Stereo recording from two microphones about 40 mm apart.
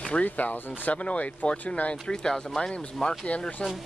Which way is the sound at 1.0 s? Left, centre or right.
Left.